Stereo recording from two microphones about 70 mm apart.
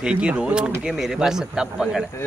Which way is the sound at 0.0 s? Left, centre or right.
Centre.